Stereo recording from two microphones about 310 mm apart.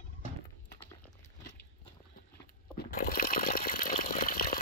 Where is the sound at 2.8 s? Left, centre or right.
Left.